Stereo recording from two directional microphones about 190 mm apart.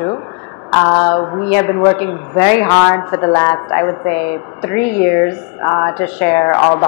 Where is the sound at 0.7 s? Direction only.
20° left (ahead or behind).